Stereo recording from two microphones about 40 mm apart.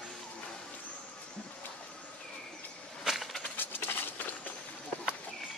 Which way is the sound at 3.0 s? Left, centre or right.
Centre.